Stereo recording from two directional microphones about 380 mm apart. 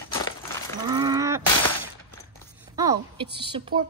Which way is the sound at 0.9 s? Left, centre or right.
Centre.